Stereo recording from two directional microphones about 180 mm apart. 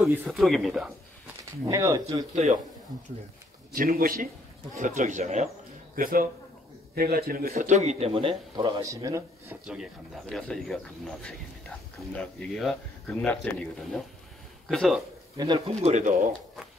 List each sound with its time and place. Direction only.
0.0 s speech: centre (ahead or behind)
1.7 s speech: 20° right (ahead or behind)
2.3 s speech: 40° right (ahead or behind)
3.7 s speech: 50° right (ahead or behind)
5.9 s speech: 50° right (ahead or behind); by 9.6 s 15° right (ahead or behind)
9.7 s speech: centre (ahead or behind)
15.3 s speech: 25° right (ahead or behind)
15.8 s speech: 40° right (ahead or behind)